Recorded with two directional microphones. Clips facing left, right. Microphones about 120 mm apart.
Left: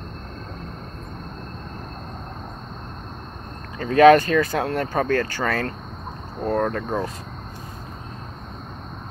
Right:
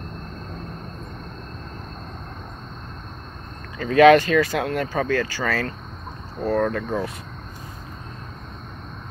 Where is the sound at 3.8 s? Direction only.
30° left (ahead or behind).